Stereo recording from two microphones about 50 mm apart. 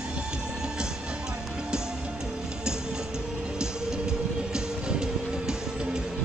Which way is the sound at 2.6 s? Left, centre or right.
Centre.